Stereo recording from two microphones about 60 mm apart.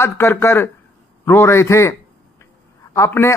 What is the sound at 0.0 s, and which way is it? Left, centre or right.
A man's voice, left.